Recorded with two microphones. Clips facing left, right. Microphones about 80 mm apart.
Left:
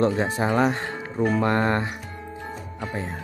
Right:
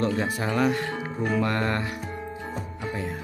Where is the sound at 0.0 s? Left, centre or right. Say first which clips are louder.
Left 4 dB; left.